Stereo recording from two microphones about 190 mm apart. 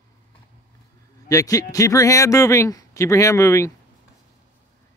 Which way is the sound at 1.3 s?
20° left (ahead or behind).